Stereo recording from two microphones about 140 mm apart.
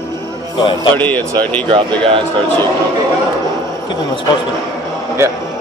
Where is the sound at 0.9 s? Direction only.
10° left (ahead or behind).